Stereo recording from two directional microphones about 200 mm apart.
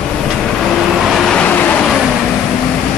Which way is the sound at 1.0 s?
Centre (ahead or behind).